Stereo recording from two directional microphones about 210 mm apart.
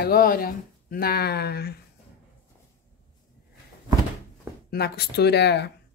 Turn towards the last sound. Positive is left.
turn(degrees=55)  # may be behind; listen again after turning